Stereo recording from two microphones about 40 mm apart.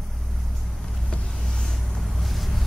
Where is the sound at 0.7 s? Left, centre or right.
Centre.